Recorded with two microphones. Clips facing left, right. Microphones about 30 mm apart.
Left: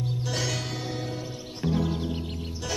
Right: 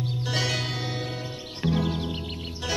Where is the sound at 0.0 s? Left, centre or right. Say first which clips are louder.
Right 2 dB; right.